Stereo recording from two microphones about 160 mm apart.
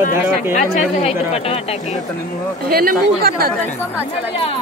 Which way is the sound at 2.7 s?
70° right (ahead or behind).